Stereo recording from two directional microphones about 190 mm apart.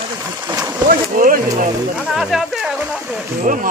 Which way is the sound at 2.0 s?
Centre (ahead or behind).